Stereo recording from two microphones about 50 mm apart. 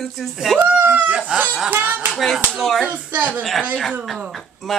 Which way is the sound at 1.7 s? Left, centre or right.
Right.